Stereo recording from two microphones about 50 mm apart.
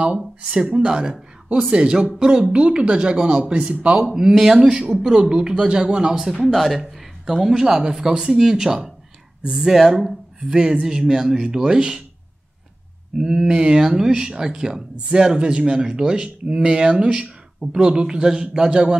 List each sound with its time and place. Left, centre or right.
0.4 s speech: centre
6.2 s speech: centre
13.2 s speech: centre